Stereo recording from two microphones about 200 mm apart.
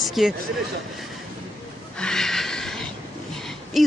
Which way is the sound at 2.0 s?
5° left (ahead or behind).